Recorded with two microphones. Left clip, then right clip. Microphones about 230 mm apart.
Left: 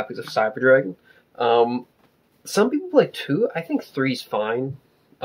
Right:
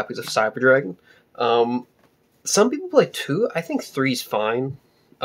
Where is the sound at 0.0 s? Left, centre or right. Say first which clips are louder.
Right 1 dB; centre.